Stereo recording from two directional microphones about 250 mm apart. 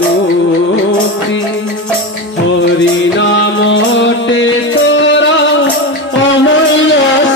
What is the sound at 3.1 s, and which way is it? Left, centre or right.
Music, left.